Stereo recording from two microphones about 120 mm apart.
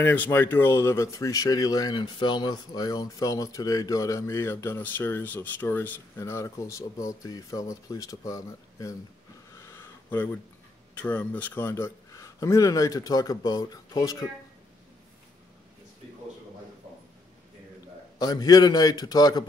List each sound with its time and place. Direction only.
0.0 s speech: 15° left (ahead or behind)
9.6 s a sound: 20° left (ahead or behind)
11.0 s speech: 10° left (ahead or behind); by 14.1 s 30° left (ahead or behind)
18.2 s a man's voice: 35° left (ahead or behind)